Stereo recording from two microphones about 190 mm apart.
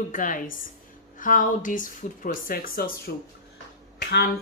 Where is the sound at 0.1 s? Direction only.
45° left (ahead or behind).